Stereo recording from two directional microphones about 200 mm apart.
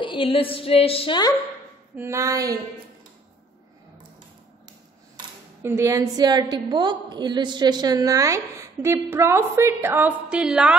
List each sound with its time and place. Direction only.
0.0 s female singing: 25° left (ahead or behind)
0.6 s a sound: 30° left (ahead or behind)
2.0 s a woman's voice: 15° right (ahead or behind)
5.6 s a woman's voice: 10° right (ahead or behind)